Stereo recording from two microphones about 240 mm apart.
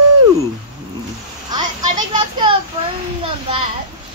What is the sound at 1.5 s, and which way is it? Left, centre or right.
Children playing, centre.